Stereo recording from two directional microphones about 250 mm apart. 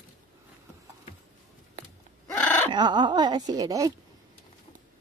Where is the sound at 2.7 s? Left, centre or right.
Centre.